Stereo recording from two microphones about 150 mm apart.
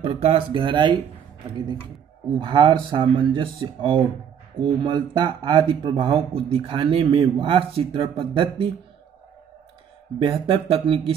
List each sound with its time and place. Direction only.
0.0 s speech: 40° right (ahead or behind)
2.4 s speech: 30° right (ahead or behind)
10.1 s speech: 35° right (ahead or behind)